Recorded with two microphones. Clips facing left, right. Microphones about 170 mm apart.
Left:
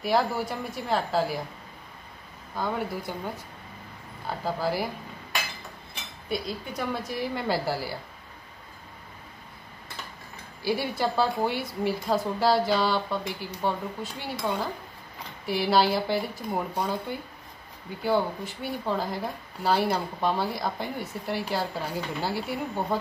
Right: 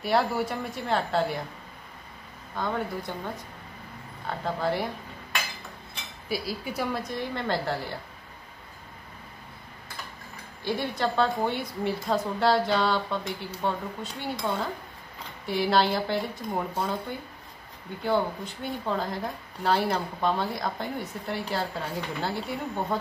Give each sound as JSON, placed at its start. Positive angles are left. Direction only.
{"t": 0.0, "sound": "speech", "side_deg": 0}
{"t": 2.5, "sound": "speech", "side_deg": 5}
{"t": 4.3, "sound": "speech", "side_deg": 5}
{"t": 6.2, "sound": "speech", "side_deg": -5}
{"t": 10.6, "sound": "speech", "side_deg": 10}
{"t": 18.0, "sound": "speech", "side_deg": 0}